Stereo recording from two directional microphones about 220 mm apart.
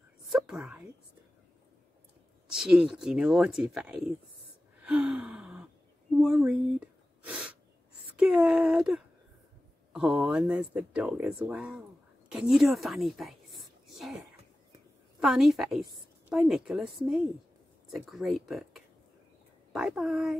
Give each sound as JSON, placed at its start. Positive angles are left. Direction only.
{"t": 0.5, "sound": "a woman's voice", "side_deg": -5}
{"t": 2.5, "sound": "a woman's voice", "side_deg": -5}
{"t": 4.8, "sound": "gasp", "side_deg": -5}
{"t": 6.3, "sound": "a sound", "side_deg": -5}
{"t": 8.2, "sound": "a woman's voice", "side_deg": -5}